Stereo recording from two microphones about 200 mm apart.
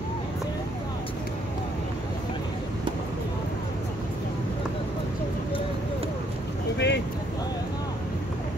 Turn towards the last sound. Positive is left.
turn(degrees=60)  # may be behind; listen again after turning